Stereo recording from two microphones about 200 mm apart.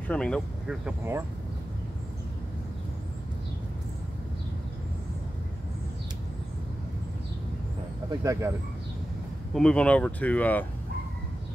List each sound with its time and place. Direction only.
0.1 s speech: 5° left (ahead or behind)
8.2 s speech: 15° right (ahead or behind)
9.5 s speech: 5° left (ahead or behind)